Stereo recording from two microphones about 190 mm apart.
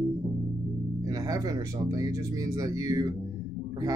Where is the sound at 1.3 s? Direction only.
20° right (ahead or behind).